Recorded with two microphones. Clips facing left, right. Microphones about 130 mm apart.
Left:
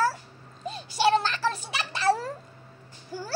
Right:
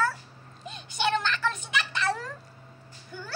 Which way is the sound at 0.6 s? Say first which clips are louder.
Left 5 dB; 35° left (ahead or behind).